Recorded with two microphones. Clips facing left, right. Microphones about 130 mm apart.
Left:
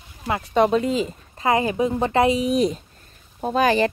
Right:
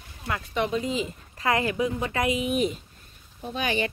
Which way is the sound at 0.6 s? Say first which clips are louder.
Left 7 dB; 60° left (ahead or behind).